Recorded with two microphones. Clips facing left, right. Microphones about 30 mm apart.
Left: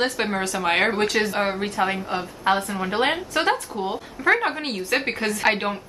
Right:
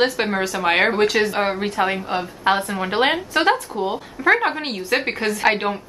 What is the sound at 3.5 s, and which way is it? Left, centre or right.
A woman's voice, centre.